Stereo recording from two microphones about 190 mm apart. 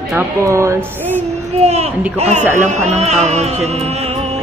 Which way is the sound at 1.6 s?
35° right (ahead or behind).